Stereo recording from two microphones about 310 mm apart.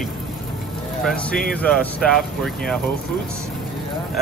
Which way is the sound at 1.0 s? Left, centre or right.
Centre.